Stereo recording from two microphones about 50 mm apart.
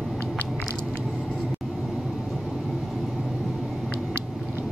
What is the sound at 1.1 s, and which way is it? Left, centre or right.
Vehicle, centre.